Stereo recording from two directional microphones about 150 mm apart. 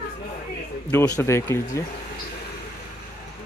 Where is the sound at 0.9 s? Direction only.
10° left (ahead or behind).